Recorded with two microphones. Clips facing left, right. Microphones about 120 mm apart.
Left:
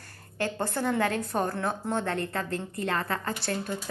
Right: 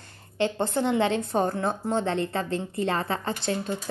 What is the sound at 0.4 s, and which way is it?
A woman's voice, 25° right (ahead or behind).